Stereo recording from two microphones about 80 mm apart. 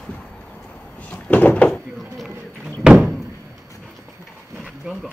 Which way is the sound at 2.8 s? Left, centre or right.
Centre.